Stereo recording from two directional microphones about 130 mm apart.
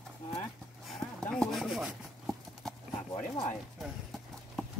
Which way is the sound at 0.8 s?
5° left (ahead or behind).